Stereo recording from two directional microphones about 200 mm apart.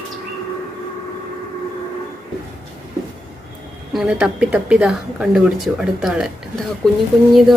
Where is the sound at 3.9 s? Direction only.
5° right (ahead or behind).